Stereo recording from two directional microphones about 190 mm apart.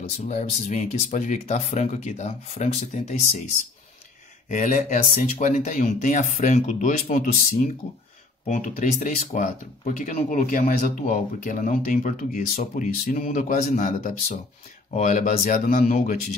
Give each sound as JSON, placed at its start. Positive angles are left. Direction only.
{"t": 0.3, "sound": "speech", "side_deg": 40}
{"t": 4.5, "sound": "speech", "side_deg": 40}